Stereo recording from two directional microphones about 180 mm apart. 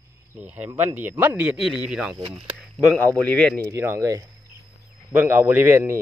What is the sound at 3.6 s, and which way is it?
Speech, 15° right (ahead or behind).